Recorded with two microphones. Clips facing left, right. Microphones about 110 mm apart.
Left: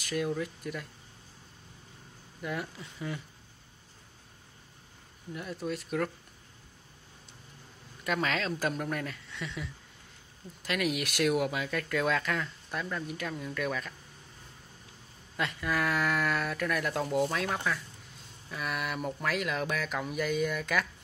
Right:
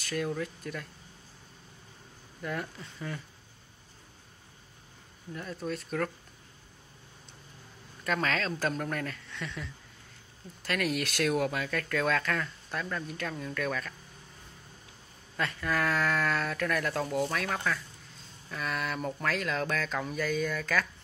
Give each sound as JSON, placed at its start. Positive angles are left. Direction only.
{"t": 0.0, "sound": "speech", "side_deg": 15}
{"t": 2.4, "sound": "speech", "side_deg": 10}
{"t": 5.3, "sound": "speech", "side_deg": 10}
{"t": 8.0, "sound": "speech", "side_deg": 10}
{"t": 15.3, "sound": "speech", "side_deg": 15}